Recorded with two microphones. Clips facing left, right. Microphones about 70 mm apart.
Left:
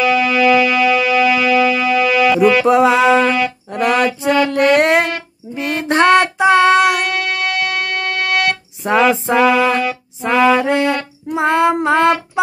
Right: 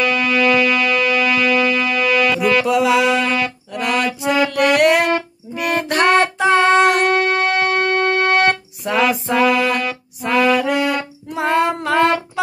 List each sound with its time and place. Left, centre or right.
0.0 s music: centre
2.6 s music: left
3.3 s music: centre
3.7 s music: left
4.5 s child singing: left
5.5 s music: left
6.3 s child singing: centre
7.1 s music: right
9.1 s child singing: left
10.2 s music: centre
11.2 s child singing: left